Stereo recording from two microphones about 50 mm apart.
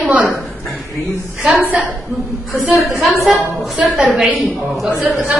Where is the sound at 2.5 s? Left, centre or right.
Right.